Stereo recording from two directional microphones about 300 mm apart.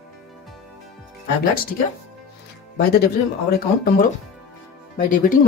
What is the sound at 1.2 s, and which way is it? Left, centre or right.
Speech, left.